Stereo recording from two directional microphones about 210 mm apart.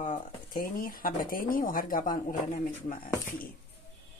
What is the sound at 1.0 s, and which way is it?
Speech, 40° left (ahead or behind).